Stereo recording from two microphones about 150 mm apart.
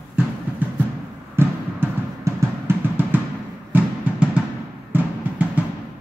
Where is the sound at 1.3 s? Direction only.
15° right (ahead or behind).